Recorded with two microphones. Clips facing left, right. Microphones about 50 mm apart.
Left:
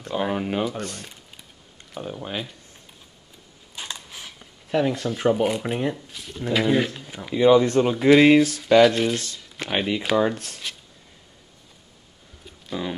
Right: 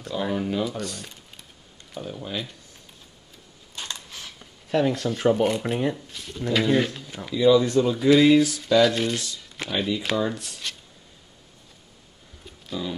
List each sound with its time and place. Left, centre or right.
0.0 s a sound: left
0.7 s speech: left
3.7 s zipper: centre
6.4 s speech: centre
7.3 s speech: left
8.8 s speech: centre
9.1 s speech: left